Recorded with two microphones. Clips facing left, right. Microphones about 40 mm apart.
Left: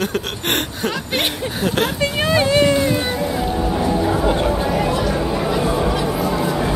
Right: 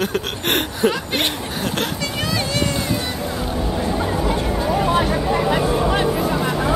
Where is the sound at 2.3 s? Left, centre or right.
Left.